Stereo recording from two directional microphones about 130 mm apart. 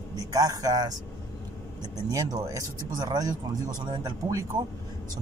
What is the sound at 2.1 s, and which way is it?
Speech, 25° right (ahead or behind).